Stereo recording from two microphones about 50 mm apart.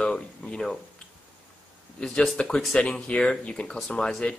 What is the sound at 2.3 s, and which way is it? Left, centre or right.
Speech, centre.